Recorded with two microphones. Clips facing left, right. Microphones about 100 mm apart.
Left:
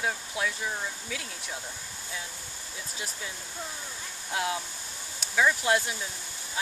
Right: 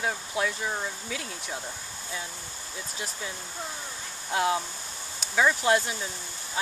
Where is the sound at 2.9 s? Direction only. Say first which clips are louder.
Right 2 dB; centre (ahead or behind).